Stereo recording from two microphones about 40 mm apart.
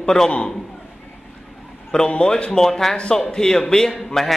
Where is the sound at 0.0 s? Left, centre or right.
Centre.